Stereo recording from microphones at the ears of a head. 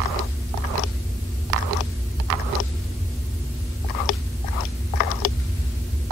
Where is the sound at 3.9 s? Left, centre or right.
Left.